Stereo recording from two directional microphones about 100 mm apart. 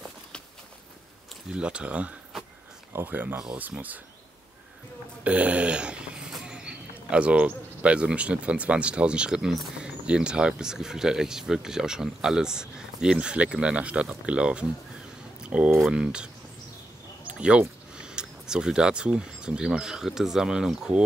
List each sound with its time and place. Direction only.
1.5 s speech: 10° right (ahead or behind)
5.2 s speech: 15° right (ahead or behind)
15.8 s speech: 10° right (ahead or behind)